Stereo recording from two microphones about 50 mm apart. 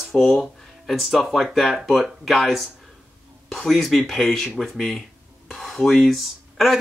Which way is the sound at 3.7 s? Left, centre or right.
Centre.